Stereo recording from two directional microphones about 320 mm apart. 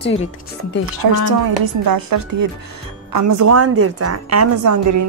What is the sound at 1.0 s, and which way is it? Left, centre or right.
A woman's voice, right.